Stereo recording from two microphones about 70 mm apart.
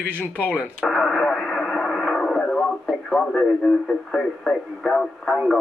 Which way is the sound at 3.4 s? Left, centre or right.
Centre.